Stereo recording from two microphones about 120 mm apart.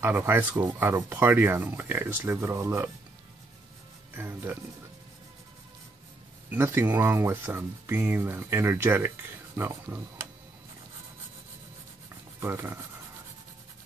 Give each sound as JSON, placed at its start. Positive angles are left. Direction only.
{"t": 0.0, "sound": "speech", "side_deg": -20}
{"t": 4.1, "sound": "speech", "side_deg": -20}
{"t": 6.5, "sound": "speech", "side_deg": -15}
{"t": 12.4, "sound": "speech", "side_deg": -20}